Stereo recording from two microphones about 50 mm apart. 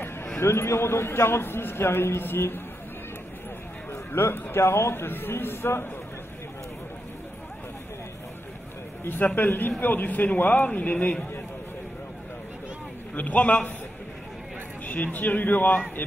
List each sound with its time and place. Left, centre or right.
0.4 s a man's voice: left
3.9 s a man's voice: left
9.0 s a man's voice: left
13.1 s a man's voice: left
15.1 s a man's voice: left